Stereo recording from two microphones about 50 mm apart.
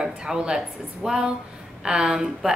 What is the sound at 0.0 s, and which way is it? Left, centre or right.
A woman's voice, centre.